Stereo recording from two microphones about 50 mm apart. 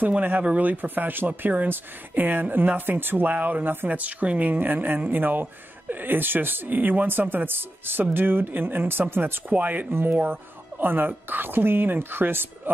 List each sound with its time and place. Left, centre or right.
0.2 s speech: right
9.5 s speech: right